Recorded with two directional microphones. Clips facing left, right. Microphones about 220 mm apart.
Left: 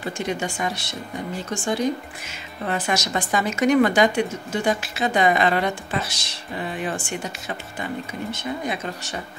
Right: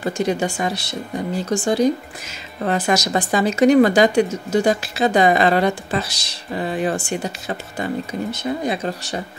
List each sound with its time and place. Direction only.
0.2 s speech: 35° right (ahead or behind)